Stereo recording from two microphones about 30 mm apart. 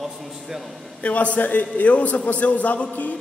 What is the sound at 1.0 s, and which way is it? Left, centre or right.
A man's voice, left.